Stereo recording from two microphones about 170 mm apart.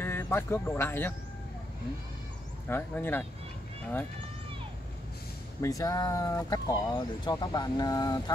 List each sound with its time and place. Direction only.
0.0 s speech: 15° left (ahead or behind)
2.7 s speech: 10° left (ahead or behind)
5.6 s speech: 20° left (ahead or behind)